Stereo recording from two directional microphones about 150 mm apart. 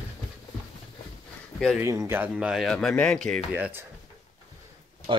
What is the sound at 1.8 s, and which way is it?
Speech, 20° right (ahead or behind).